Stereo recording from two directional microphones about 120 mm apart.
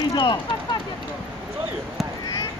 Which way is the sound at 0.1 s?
45° left (ahead or behind).